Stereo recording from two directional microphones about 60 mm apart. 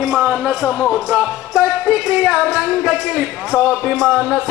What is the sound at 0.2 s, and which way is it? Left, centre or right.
Speech, centre.